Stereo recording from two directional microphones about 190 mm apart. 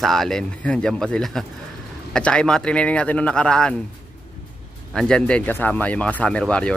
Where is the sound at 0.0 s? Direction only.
Centre (ahead or behind).